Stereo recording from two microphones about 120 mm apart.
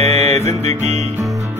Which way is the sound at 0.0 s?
60° right (ahead or behind).